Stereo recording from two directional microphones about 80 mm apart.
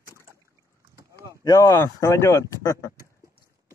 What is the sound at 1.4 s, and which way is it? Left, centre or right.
Speech, left.